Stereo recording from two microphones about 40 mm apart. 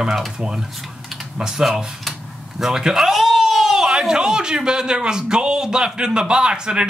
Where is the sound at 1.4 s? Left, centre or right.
Centre.